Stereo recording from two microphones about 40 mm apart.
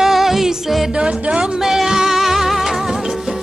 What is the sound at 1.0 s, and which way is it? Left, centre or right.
Music, right.